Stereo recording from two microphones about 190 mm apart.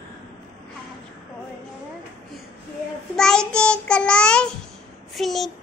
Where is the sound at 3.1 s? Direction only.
5° left (ahead or behind).